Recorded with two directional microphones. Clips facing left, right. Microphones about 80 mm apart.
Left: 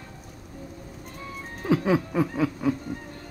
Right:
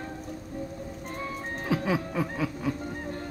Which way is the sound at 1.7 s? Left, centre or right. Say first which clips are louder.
Left 5 dB; centre.